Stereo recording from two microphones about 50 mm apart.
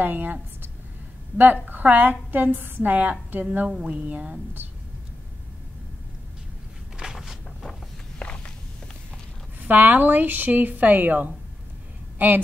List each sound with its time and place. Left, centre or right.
0.0 s a woman's voice: right
3.6 s a woman's voice: centre
7.0 s a sound: centre
8.2 s walk: left
9.7 s a woman's voice: right